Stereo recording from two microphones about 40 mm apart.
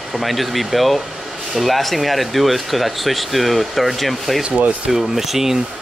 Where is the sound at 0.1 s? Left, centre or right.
Centre.